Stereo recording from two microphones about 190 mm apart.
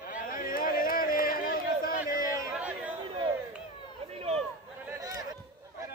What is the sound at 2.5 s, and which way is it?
Chatter, 5° right (ahead or behind).